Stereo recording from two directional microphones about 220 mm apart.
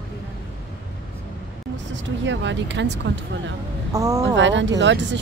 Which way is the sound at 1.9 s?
55° right (ahead or behind).